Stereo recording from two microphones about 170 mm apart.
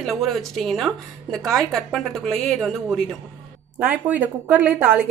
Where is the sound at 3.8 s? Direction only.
10° right (ahead or behind).